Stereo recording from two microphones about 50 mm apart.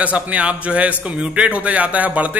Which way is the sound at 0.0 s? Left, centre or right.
Right.